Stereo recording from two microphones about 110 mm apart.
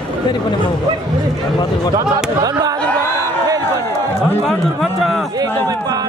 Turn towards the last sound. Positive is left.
turn(degrees=0)  # may be behind; listen again after turning